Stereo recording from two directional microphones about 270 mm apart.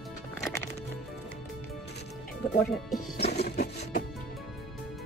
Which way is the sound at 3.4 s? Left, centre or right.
Left.